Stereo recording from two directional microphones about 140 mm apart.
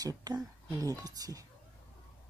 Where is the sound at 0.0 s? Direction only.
25° right (ahead or behind).